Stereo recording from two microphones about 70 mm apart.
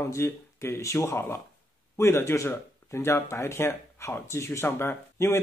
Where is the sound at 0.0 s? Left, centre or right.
Left.